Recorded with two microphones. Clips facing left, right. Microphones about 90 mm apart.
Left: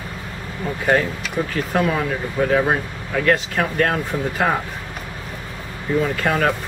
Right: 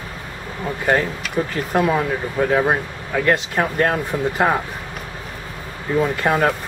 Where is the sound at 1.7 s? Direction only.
15° right (ahead or behind).